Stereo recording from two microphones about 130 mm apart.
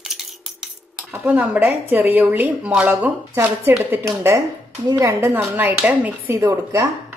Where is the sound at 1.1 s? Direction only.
10° right (ahead or behind).